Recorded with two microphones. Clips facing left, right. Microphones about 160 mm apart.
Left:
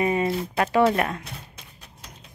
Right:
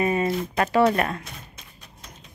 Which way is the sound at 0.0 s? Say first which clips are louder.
Even; 15° left (ahead or behind).